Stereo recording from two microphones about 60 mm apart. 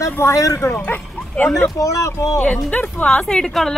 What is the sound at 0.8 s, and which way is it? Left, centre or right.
Speech, left.